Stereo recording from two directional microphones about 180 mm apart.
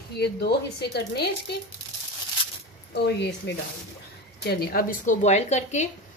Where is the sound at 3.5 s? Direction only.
70° left (ahead or behind).